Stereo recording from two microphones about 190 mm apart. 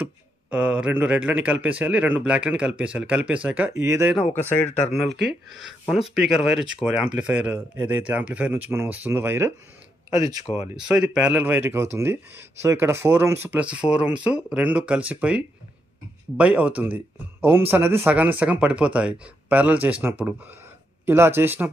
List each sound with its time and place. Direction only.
0.0 s speech: 5° right (ahead or behind)
4.3 s speech: 10° left (ahead or behind)
5.3 s speech: centre (ahead or behind); by 10.4 s 20° right (ahead or behind)
10.4 s speech: 35° left (ahead or behind)
10.8 s speech: 5° right (ahead or behind)